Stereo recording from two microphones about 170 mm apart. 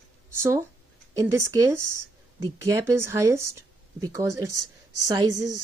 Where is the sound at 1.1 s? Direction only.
20° right (ahead or behind).